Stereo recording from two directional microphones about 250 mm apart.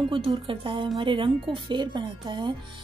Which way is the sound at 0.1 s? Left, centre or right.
Centre.